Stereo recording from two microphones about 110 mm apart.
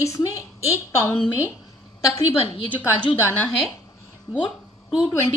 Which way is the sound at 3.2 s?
20° left (ahead or behind).